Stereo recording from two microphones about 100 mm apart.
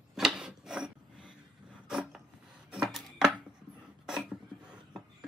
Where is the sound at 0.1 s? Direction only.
5° right (ahead or behind).